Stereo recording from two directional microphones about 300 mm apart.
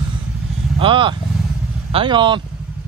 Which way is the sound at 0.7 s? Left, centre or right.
Centre.